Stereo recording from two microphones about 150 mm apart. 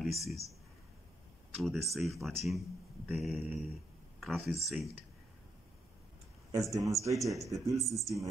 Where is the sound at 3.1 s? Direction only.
Centre (ahead or behind).